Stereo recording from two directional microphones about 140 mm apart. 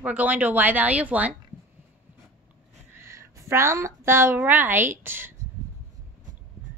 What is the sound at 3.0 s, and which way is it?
A woman's voice, 20° right (ahead or behind).